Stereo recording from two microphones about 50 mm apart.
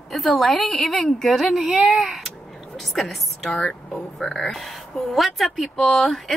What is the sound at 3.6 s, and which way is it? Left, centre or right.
Speech, centre.